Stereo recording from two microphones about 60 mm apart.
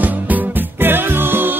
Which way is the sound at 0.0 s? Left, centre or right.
Right.